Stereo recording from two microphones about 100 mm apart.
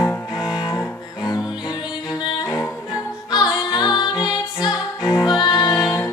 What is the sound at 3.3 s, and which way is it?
Music, 45° left (ahead or behind).